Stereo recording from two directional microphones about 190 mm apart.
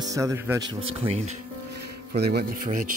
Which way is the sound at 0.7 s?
30° right (ahead or behind).